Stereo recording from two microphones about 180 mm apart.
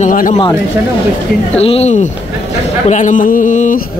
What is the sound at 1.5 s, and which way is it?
A man's voice, 35° left (ahead or behind).